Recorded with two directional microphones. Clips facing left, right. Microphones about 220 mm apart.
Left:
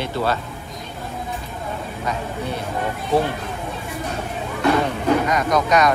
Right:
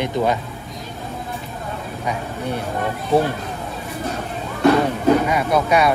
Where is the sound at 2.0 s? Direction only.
10° right (ahead or behind).